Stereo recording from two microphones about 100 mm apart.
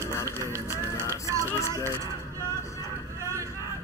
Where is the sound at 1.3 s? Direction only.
30° right (ahead or behind).